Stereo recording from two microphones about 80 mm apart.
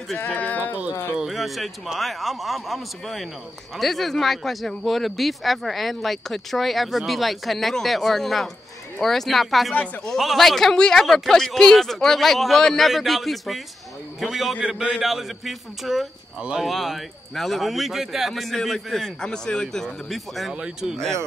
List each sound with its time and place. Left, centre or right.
0.3 s speech: left
1.1 s speech: centre
14.6 s speech: centre
15.0 s speech: centre
20.5 s speech: centre